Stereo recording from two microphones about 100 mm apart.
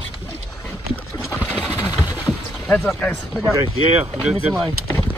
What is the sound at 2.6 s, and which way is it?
Speech, 15° left (ahead or behind).